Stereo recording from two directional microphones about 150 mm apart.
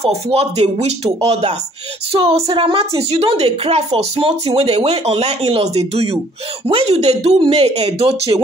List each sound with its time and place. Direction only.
0.0 s a woman's voice: 45° right (ahead or behind)